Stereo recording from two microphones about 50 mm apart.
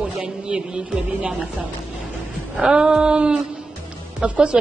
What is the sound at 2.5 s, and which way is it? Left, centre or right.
A woman's voice, right.